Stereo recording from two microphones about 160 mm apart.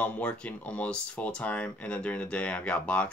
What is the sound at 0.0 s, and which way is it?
Speech, 10° left (ahead or behind).